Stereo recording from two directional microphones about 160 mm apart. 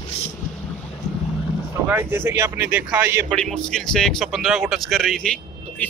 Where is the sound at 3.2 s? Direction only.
5° left (ahead or behind).